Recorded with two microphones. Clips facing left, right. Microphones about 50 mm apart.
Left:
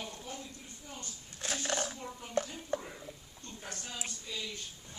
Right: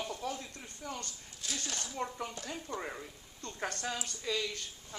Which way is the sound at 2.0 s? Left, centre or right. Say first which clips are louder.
Right 6 dB; right.